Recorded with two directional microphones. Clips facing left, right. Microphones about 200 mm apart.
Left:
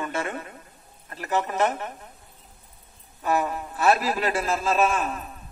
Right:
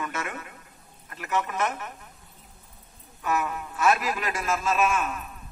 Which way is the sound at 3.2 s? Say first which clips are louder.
Left 3 dB; 35° left (ahead or behind).